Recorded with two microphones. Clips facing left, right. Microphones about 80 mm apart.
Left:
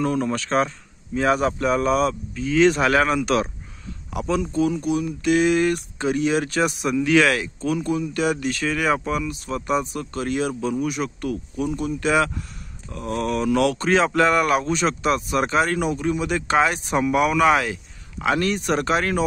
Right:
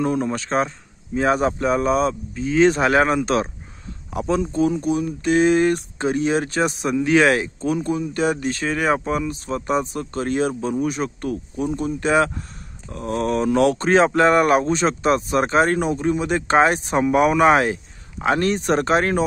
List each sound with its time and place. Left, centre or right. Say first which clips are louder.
0.0 s speech: right 1 dB; right